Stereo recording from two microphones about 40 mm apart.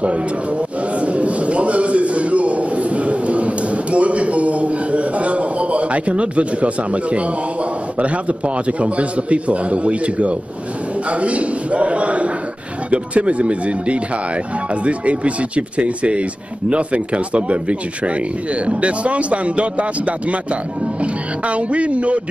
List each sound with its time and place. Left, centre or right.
0.0 s a man's voice: right